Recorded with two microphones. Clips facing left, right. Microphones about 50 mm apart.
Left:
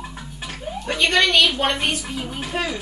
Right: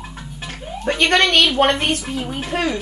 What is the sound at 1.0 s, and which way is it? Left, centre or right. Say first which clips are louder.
Speech: right 2 dB; right.